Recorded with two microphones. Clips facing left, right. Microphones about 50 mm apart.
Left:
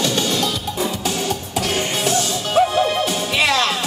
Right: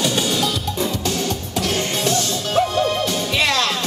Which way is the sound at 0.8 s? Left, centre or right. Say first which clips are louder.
Left 1 dB; centre.